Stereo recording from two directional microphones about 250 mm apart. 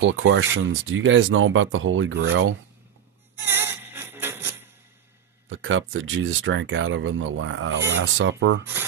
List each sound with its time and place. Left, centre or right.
0.0 s speech: right
3.3 s music: centre
5.5 s speech: right